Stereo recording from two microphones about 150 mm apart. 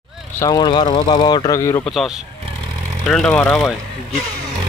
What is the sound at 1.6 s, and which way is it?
Speech, 20° left (ahead or behind).